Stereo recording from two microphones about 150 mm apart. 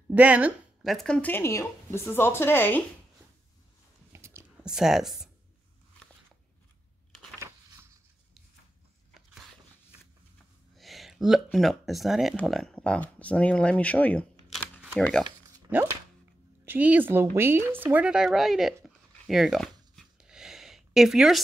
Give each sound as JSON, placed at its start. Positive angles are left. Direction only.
{"t": 0.1, "sound": "speech", "side_deg": -10}
{"t": 0.9, "sound": "speech", "side_deg": 5}
{"t": 4.1, "sound": "a sound", "side_deg": -15}
{"t": 4.6, "sound": "speech", "side_deg": -5}
{"t": 9.3, "sound": "dog", "side_deg": -5}
{"t": 10.8, "sound": "a sound", "side_deg": 0}
{"t": 11.5, "sound": "speech", "side_deg": 0}
{"t": 15.7, "sound": "speech", "side_deg": -10}
{"t": 19.2, "sound": "a sound", "side_deg": 0}